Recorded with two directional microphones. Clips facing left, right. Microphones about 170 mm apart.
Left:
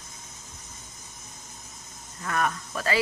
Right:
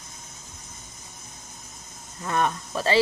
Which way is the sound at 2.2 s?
25° right (ahead or behind).